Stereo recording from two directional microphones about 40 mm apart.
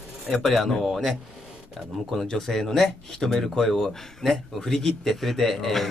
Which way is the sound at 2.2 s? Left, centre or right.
Centre.